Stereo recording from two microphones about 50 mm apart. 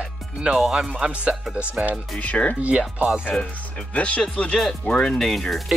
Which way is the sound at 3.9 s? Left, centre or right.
Left.